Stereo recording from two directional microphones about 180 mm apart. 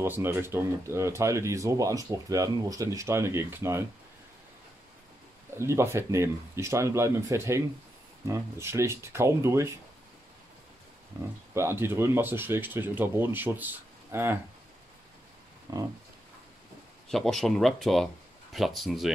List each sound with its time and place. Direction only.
0.0 s speech: 15° right (ahead or behind)
5.6 s speech: 15° right (ahead or behind)
11.1 s speech: 15° right (ahead or behind)
15.7 s a sound: 20° right (ahead or behind)
17.1 s speech: centre (ahead or behind)